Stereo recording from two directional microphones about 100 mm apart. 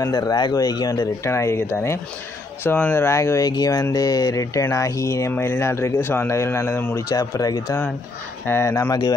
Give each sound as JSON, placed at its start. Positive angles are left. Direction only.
{"t": 0.0, "sound": "speech", "side_deg": 40}
{"t": 1.2, "sound": "speech", "side_deg": 25}
{"t": 3.4, "sound": "speech", "side_deg": 40}
{"t": 7.1, "sound": "speech", "side_deg": 35}